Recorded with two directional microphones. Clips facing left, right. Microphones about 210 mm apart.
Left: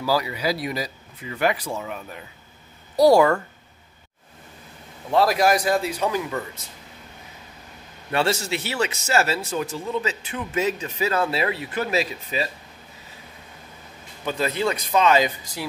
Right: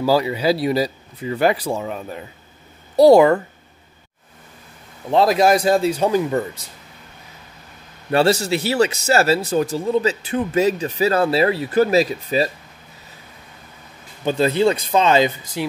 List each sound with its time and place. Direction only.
0.0 s a man's voice: 25° right (ahead or behind)
5.1 s a man's voice: 20° right (ahead or behind)
8.1 s speech: 35° right (ahead or behind)
14.2 s a man's voice: 30° right (ahead or behind)